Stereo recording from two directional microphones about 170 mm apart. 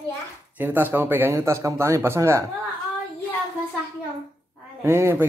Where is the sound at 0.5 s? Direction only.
10° right (ahead or behind).